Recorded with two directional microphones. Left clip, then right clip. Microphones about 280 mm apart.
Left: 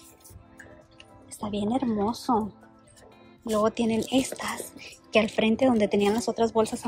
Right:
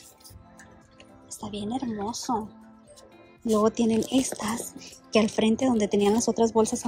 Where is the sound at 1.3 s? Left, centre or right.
Centre.